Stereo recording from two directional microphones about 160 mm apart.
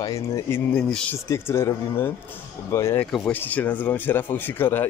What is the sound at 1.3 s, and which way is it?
Speech, 15° left (ahead or behind).